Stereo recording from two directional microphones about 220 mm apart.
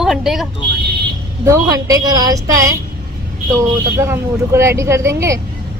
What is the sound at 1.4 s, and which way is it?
Speech, 15° right (ahead or behind).